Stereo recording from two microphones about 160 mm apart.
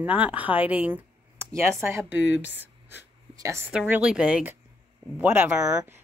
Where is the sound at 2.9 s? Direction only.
15° right (ahead or behind).